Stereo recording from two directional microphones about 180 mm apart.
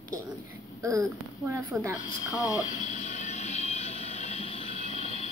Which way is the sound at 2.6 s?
45° left (ahead or behind).